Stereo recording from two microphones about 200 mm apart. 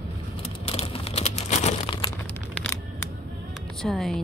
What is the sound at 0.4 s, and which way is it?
Crumpling, 30° left (ahead or behind).